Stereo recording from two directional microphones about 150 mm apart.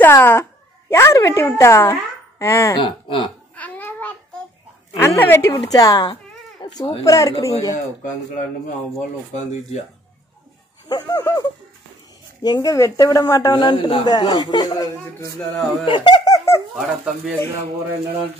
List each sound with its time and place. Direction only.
0.0 s speech: 15° left (ahead or behind)
2.8 s speech: 35° left (ahead or behind)
3.5 s babbling: 10° left (ahead or behind)
4.9 s speech: 15° left (ahead or behind)
7.7 s speech: 60° left (ahead or behind)
10.9 s speech: 25° left (ahead or behind)
16.7 s speech: 5° right (ahead or behind)